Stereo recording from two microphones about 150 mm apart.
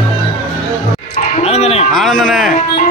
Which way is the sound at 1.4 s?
45° left (ahead or behind).